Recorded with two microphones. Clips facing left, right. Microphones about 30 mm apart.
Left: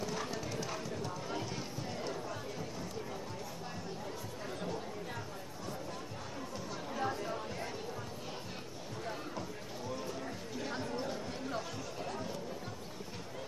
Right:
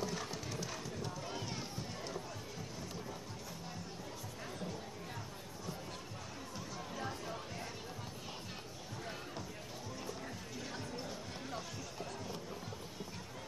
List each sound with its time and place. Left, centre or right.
0.3 s horse: centre
7.0 s chatter: left
10.7 s chatter: left
11.0 s chatter: left